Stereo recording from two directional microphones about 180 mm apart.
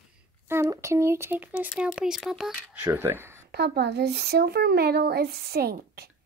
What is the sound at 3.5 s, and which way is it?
Speech, 65° right (ahead or behind).